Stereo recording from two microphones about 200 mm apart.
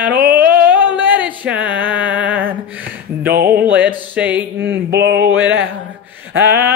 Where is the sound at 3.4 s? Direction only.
10° right (ahead or behind).